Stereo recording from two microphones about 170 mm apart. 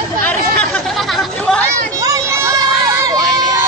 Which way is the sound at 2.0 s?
20° right (ahead or behind).